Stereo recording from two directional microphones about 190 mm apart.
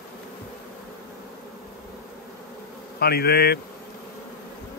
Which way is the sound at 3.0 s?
55° left (ahead or behind).